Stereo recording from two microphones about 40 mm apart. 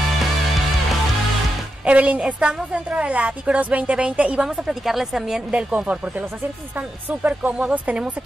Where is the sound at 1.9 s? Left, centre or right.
Right.